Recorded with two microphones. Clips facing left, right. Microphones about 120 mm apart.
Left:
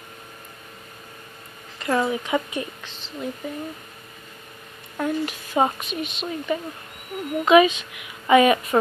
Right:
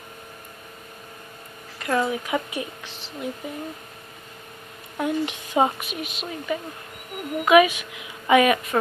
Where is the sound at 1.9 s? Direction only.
5° left (ahead or behind).